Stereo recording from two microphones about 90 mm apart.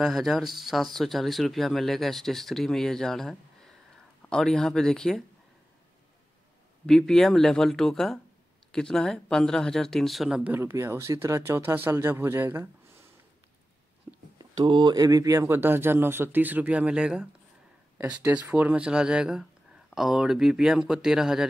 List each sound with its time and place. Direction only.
0.0 s speech: centre (ahead or behind)
6.9 s speech: 5° left (ahead or behind)
10.6 s speech: 30° right (ahead or behind)
14.1 s a sound: 30° right (ahead or behind)
14.4 s speech: 60° right (ahead or behind)
15.0 s speech: 40° right (ahead or behind)
15.5 s speech: 25° right (ahead or behind); by 21.5 s 5° right (ahead or behind)